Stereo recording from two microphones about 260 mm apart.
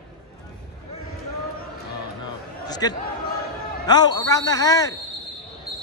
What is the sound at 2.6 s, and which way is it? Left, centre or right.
A man's voice, centre.